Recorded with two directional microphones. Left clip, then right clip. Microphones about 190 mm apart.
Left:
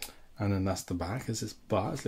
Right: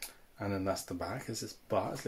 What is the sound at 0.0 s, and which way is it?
Speech, 50° left (ahead or behind).